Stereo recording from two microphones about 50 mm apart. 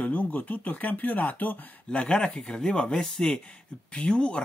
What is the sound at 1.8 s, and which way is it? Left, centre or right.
Speech, centre.